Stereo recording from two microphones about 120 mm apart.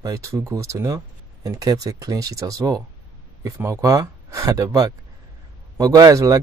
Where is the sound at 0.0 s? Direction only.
25° right (ahead or behind).